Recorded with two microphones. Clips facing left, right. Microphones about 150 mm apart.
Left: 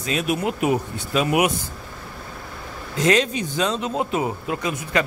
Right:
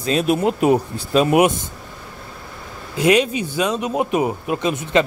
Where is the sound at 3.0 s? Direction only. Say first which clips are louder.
Right 3 dB; 10° right (ahead or behind).